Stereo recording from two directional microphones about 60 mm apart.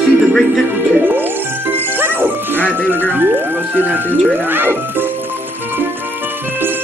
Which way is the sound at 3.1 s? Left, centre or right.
Right.